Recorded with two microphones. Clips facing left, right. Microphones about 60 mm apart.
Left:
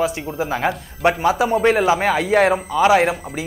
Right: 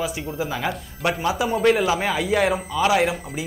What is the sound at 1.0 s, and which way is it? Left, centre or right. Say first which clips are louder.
Speech: left 6 dB; left.